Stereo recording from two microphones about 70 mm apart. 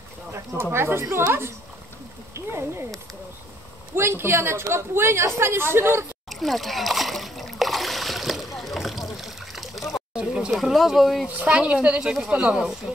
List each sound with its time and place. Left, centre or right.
0.3 s speech: right
2.3 s speech: right
3.9 s speech: right
6.4 s splash: centre
10.1 s a sound: centre
10.5 s speech: centre
11.2 s a woman's voice: centre